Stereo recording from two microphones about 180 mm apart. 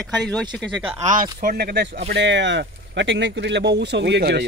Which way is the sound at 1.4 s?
55° right (ahead or behind).